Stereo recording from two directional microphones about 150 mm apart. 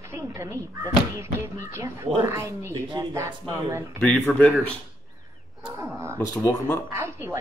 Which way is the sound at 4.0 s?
10° left (ahead or behind).